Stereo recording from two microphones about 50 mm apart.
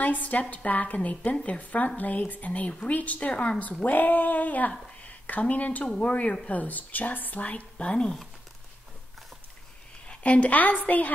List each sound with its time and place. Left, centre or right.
0.0 s a woman's voice: left
3.8 s a woman's voice: left; by 8.2 s centre
10.0 s a woman's voice: left